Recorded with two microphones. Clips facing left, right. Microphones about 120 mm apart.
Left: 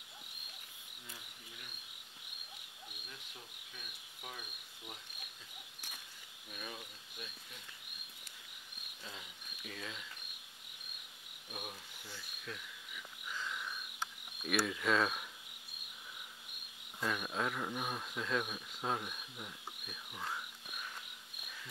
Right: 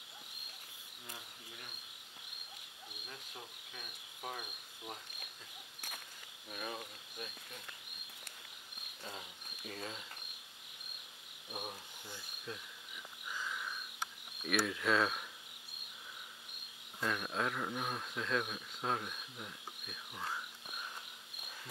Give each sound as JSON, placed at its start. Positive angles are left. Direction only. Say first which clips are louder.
{"t": 3.8, "sound": "cricket", "louder": "right 6 dB", "side_deg": -45}
{"t": 6.5, "sound": "cricket", "louder": "right 4 dB", "side_deg": -45}
{"t": 9.0, "sound": "cricket", "louder": "right 3 dB", "side_deg": -40}
{"t": 11.5, "sound": "cricket", "louder": "right 2 dB", "side_deg": -25}
{"t": 13.3, "sound": "frog", "louder": "even", "side_deg": -5}
{"t": 14.4, "sound": "speech", "louder": "even", "side_deg": 0}
{"t": 17.0, "sound": "speech", "louder": "even", "side_deg": 5}